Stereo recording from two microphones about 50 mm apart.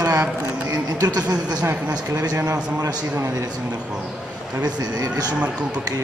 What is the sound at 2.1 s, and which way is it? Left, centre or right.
A man's voice, right.